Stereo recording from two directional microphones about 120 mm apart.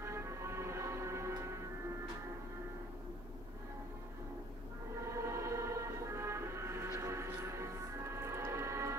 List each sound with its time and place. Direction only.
0.0 s music: 20° right (ahead or behind)
5.1 s music: 25° right (ahead or behind)